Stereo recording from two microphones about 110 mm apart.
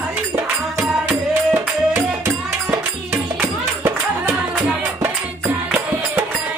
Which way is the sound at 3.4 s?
20° right (ahead or behind).